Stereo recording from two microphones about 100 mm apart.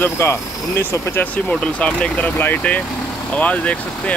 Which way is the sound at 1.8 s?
15° left (ahead or behind).